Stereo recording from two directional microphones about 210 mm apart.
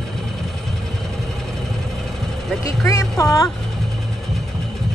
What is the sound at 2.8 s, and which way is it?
Music, 15° left (ahead or behind).